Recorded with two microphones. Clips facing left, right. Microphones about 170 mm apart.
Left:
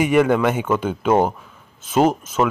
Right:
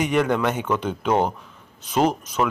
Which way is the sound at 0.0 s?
5° left (ahead or behind).